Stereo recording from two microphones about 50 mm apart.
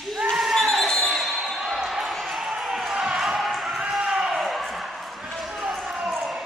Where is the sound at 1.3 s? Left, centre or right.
Centre.